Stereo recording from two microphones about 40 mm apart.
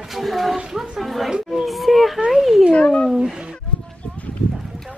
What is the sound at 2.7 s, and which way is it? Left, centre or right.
Cat, left.